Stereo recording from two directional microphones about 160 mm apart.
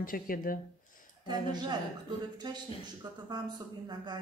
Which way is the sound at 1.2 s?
25° right (ahead or behind).